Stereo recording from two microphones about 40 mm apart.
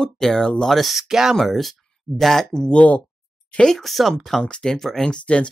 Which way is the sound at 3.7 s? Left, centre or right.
Centre.